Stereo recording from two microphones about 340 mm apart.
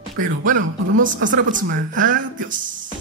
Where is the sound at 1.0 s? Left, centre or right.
Right.